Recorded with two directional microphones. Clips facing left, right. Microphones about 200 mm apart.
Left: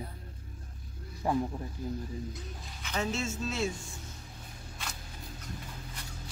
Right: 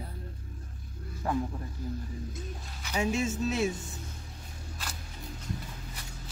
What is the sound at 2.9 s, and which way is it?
Speech, 15° right (ahead or behind).